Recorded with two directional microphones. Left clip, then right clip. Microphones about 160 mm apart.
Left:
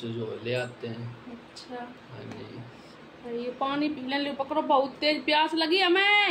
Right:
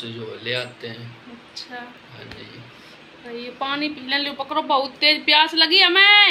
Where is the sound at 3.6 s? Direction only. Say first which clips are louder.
Right 5 dB; 10° left (ahead or behind).